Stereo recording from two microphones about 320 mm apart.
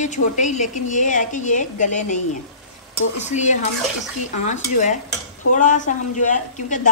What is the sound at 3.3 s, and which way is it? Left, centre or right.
A woman's voice, left.